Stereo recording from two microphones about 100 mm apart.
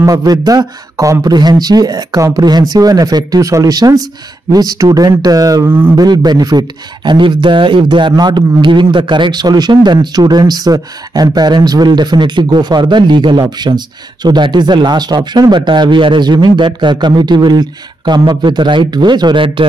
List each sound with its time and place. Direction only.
0.0 s speech: 40° right (ahead or behind)
5.7 s a man's voice: 20° right (ahead or behind)
5.9 s speech: 40° right (ahead or behind)